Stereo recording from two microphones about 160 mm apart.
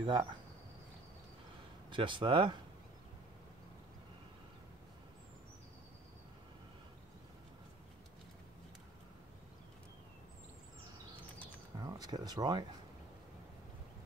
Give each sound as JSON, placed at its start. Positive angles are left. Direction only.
{"t": 0.0, "sound": "speech", "side_deg": -30}
{"t": 1.9, "sound": "speech", "side_deg": -30}
{"t": 11.8, "sound": "speech", "side_deg": -25}